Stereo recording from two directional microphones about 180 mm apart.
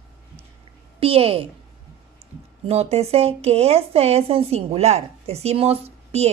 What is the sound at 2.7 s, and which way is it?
A woman's voice, 35° right (ahead or behind).